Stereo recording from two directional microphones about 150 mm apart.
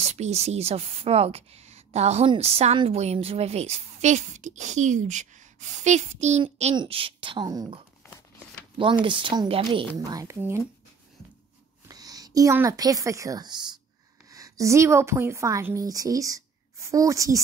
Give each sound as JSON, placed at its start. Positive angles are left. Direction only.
{"t": 0.0, "sound": "a woman's voice", "side_deg": -45}
{"t": 6.7, "sound": "speech", "side_deg": -35}
{"t": 8.7, "sound": "speech", "side_deg": -35}
{"t": 9.9, "sound": "a woman's voice", "side_deg": -25}
{"t": 11.9, "sound": "a sound", "side_deg": -25}
{"t": 12.5, "sound": "a woman's voice", "side_deg": -25}